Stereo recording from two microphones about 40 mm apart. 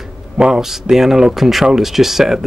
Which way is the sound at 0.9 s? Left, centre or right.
Centre.